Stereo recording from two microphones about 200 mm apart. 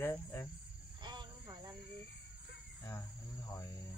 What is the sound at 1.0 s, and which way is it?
Cricket, 20° right (ahead or behind).